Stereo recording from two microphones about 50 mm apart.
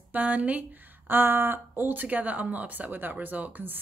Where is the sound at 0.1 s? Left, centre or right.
Right.